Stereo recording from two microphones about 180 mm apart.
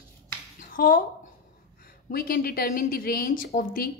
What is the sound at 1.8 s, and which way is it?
A woman's voice, 55° left (ahead or behind).